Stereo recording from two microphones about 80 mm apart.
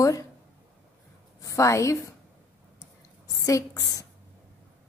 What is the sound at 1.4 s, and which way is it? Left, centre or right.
Speech, left.